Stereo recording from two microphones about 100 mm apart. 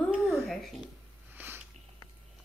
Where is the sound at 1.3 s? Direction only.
20° right (ahead or behind).